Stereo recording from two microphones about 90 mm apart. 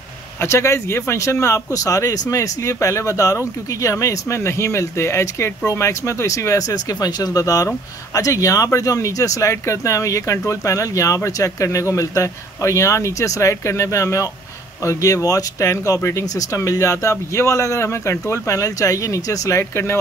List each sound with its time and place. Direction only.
0.4 s speech: 30° left (ahead or behind)